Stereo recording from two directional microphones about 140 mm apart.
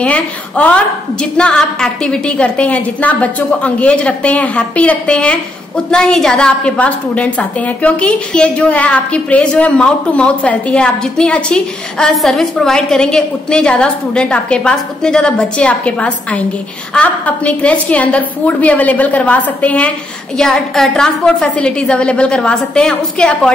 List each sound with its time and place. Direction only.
0.0 s a woman's voice: 10° left (ahead or behind)